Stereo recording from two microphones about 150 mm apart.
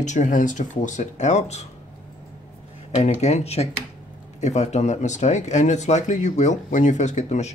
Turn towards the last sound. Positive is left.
turn(degrees=50)  # may be behind; listen again after turning